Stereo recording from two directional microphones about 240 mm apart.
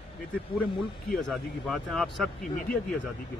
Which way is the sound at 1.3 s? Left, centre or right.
Centre.